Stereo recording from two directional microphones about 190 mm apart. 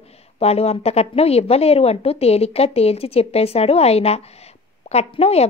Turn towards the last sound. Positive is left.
turn(degrees=35)  # may be behind; listen again after turning